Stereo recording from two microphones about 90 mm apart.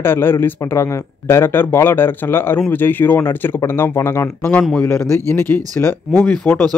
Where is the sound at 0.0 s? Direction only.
25° left (ahead or behind).